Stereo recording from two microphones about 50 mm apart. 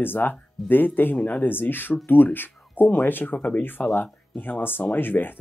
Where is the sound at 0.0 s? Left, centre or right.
Left.